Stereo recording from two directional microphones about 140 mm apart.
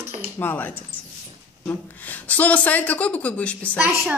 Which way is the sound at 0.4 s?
15° left (ahead or behind).